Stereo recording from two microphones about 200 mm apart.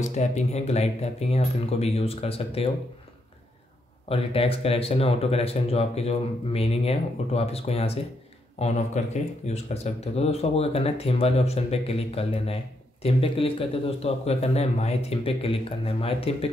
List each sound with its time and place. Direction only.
0.0 s speech: 35° left (ahead or behind)
4.1 s speech: 30° left (ahead or behind)